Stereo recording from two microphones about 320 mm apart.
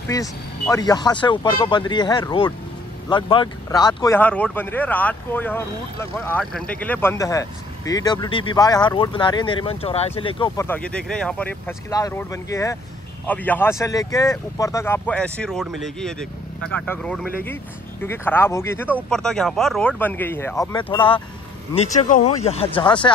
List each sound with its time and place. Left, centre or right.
0.1 s speech: centre